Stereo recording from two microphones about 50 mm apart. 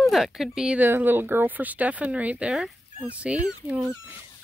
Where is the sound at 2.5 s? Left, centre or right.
Centre.